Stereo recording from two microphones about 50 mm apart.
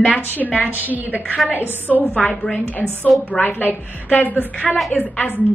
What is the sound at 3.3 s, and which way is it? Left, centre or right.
A woman's voice, left.